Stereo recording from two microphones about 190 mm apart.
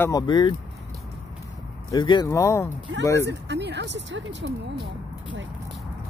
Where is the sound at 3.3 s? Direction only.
65° right (ahead or behind).